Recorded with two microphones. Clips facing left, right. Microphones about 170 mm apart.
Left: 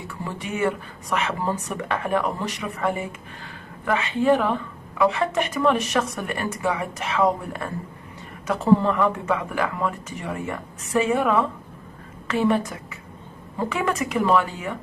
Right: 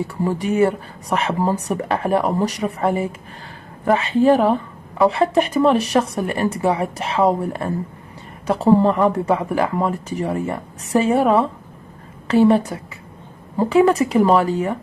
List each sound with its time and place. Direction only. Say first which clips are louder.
0.0 s a woman's voice: right 11 dB; 40° right (ahead or behind)